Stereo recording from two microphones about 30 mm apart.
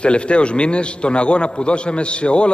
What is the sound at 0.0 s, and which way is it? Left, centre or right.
A man's voice, left.